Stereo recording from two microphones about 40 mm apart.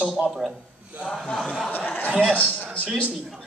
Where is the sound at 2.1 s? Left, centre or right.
Left.